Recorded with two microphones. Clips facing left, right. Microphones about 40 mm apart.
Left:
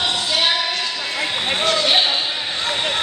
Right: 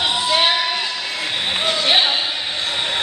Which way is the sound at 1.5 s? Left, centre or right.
Centre.